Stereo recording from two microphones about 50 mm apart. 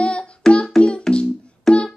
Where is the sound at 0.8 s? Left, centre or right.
Centre.